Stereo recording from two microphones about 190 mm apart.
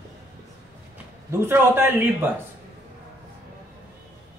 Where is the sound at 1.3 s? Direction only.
10° right (ahead or behind).